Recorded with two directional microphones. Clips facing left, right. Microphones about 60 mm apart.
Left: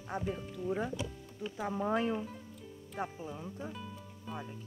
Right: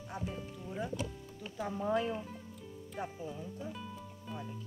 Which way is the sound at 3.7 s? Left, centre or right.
Centre.